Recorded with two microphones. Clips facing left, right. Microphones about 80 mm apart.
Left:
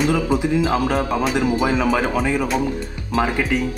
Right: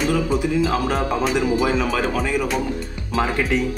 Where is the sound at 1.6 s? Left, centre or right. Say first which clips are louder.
Left 1 dB; centre.